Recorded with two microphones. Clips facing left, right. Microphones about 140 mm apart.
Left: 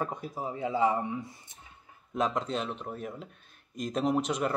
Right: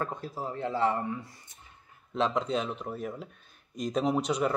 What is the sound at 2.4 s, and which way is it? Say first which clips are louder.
Speech: right 2 dB; centre (ahead or behind).